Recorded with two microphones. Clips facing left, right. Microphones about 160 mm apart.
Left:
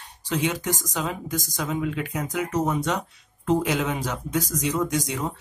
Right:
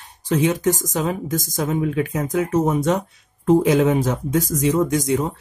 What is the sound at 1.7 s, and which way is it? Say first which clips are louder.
Speech: right 6 dB; 45° right (ahead or behind).